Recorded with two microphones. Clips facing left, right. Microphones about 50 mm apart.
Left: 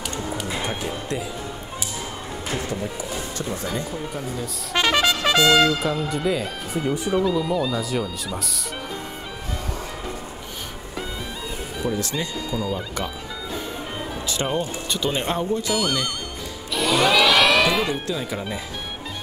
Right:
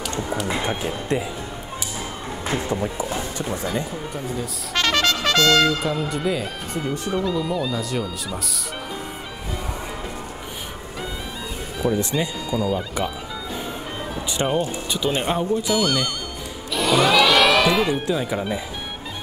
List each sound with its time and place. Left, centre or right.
0.5 s music: centre
1.0 s speech: right
2.4 s speech: right
4.7 s trumpet: centre
5.2 s speech: centre
12.0 s speech: centre
12.4 s speech: centre
14.2 s speech: centre
16.7 s music: centre
18.0 s speech: centre